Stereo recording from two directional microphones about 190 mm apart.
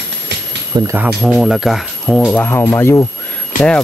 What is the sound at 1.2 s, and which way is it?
Speech, centre (ahead or behind).